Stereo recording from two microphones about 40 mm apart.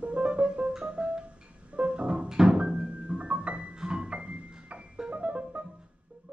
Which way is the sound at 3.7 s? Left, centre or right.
Right.